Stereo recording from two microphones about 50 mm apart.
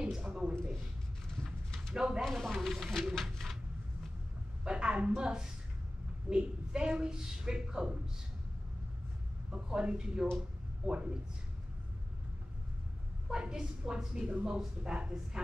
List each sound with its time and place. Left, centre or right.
0.0 s a man's voice: centre
2.0 s a woman's voice: centre
2.2 s speech: centre
3.2 s a sound: centre
4.6 s a woman's voice: right
9.5 s a woman's voice: centre
10.8 s a woman's voice: right
13.3 s a woman's voice: centre